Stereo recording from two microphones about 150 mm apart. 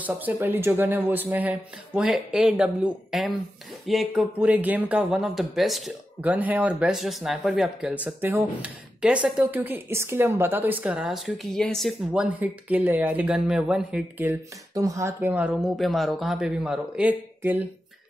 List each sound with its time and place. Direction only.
0.0 s speech: 15° right (ahead or behind)
6.2 s speech: 10° right (ahead or behind)
12.1 s speech: 10° right (ahead or behind)
14.7 s speech: 20° right (ahead or behind)